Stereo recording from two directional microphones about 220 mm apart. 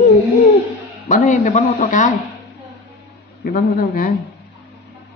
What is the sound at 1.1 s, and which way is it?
A man's voice, 35° left (ahead or behind).